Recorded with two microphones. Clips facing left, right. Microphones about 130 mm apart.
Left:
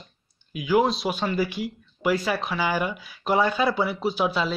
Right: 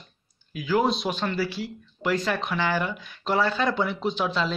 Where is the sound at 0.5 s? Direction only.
15° left (ahead or behind).